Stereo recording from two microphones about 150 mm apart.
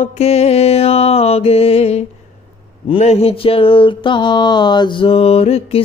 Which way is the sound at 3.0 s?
40° left (ahead or behind).